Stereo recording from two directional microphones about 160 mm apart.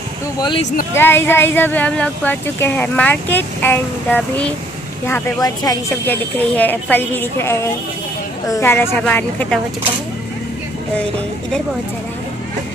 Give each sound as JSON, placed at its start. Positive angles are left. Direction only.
{"t": 0.9, "sound": "speech", "side_deg": 15}
{"t": 6.0, "sound": "speech", "side_deg": 10}